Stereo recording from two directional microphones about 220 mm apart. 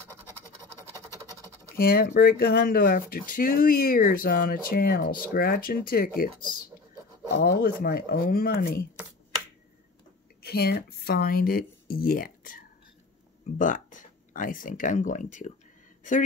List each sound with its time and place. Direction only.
1.8 s speech: 40° left (ahead or behind)
7.3 s speech: 45° left (ahead or behind)
10.4 s speech: 45° left (ahead or behind)